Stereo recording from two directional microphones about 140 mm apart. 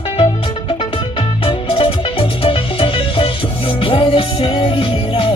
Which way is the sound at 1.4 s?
40° left (ahead or behind).